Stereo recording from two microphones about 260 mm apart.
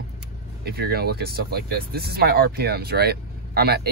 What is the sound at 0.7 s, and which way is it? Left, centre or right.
Speech, right.